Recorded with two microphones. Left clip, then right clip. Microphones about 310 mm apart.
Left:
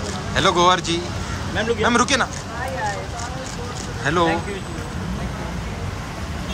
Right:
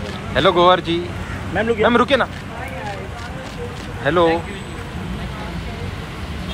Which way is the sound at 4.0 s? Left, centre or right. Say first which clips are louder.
Right 4 dB; centre.